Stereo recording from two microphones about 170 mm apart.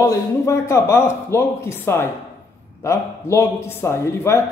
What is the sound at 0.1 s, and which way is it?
A man's voice, 15° left (ahead or behind).